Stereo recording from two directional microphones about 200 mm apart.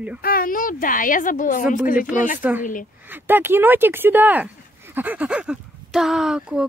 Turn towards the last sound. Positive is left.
turn(degrees=-5)  # may be behind; listen again after turning